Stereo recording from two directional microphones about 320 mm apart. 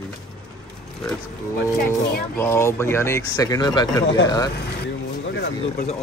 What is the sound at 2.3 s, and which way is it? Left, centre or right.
Speech, centre.